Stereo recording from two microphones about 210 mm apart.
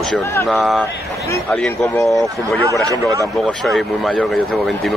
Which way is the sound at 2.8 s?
15° right (ahead or behind).